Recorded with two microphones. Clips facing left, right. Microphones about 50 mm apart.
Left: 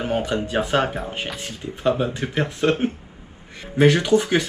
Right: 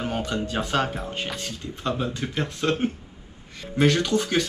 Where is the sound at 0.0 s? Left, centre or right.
Centre.